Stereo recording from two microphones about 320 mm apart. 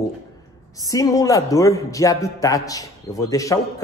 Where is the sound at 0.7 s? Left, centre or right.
Centre.